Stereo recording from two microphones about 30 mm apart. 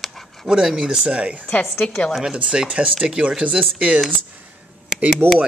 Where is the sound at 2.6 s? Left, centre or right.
Right.